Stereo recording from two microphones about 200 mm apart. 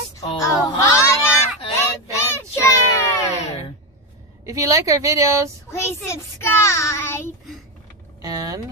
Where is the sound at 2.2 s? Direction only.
15° left (ahead or behind).